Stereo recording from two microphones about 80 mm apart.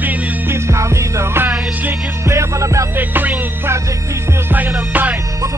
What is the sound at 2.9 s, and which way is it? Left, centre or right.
Music, right.